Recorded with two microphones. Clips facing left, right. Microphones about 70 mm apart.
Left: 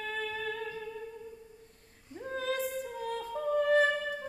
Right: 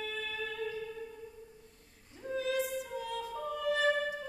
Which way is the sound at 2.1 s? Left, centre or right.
Left.